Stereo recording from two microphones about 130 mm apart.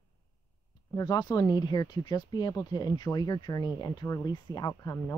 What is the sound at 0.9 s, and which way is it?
Speech, 30° left (ahead or behind).